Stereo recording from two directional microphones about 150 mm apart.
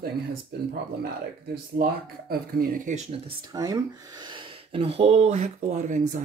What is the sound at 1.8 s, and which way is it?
Speech, 80° right.